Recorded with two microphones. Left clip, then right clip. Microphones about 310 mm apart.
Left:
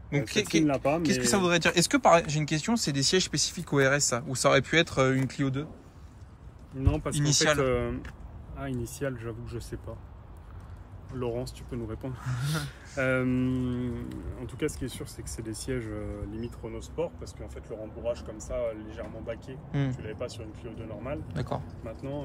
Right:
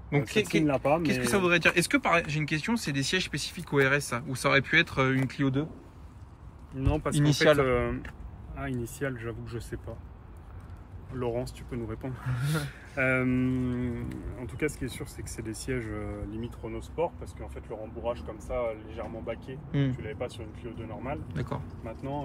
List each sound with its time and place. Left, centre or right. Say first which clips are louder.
0.1 s speech: even; centre
6.8 s speech: right 2 dB; centre
7.2 s speech: right 3 dB; centre
11.1 s speech: right 1 dB; centre
16.3 s speech: even; centre
18.7 s speech: right 1 dB; centre
19.7 s speech: right 2 dB; centre
20.1 s speech: right 1 dB; centre
21.3 s speech: left 2 dB; centre